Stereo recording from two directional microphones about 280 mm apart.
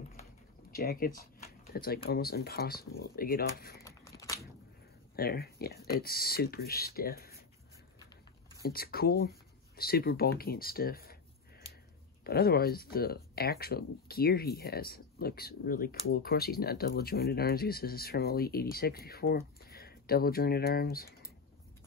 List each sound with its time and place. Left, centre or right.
0.2 s a sound: left
1.7 s speech: left
3.8 s a sound: centre
5.1 s speech: left
8.6 s speech: left
12.3 s speech: left